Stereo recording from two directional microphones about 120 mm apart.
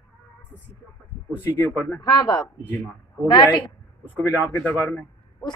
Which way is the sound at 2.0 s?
30° left (ahead or behind).